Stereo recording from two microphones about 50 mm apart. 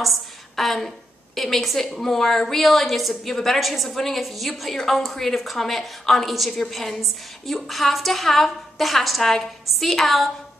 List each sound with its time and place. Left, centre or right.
0.0 s a woman's voice: centre